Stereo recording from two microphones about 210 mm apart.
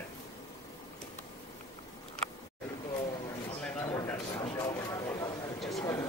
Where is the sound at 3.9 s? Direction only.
15° left (ahead or behind).